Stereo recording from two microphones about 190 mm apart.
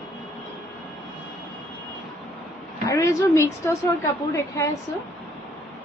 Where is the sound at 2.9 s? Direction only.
15° left (ahead or behind).